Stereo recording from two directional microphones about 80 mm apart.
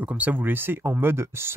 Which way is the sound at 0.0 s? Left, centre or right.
Centre.